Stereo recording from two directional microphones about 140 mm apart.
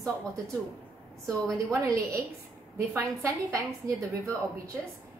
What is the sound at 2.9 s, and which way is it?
A woman's voice, 20° right (ahead or behind).